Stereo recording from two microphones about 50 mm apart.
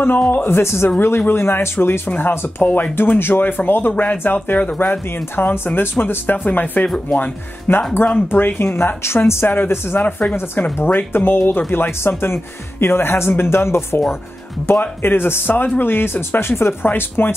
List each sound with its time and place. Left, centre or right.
0.3 s speech: left
0.6 s speech: left
0.8 s speech: left
3.9 s speech: left
4.2 s speech: left
14.7 s speech: left
16.8 s speech: left